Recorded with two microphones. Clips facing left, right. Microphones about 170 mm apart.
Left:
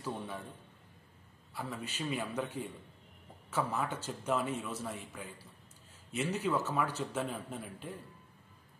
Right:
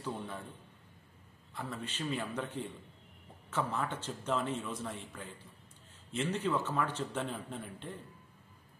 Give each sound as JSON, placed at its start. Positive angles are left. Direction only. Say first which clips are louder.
{"t": 1.5, "sound": "a man's voice", "louder": "even", "side_deg": 10}